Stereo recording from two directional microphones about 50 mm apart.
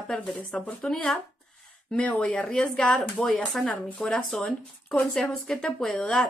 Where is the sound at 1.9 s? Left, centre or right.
Left.